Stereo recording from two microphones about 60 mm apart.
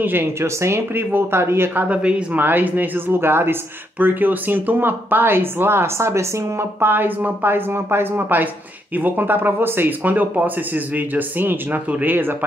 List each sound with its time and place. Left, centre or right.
0.0 s speech: right
1.9 s a man's voice: centre
2.4 s speech: right
6.9 s speech: right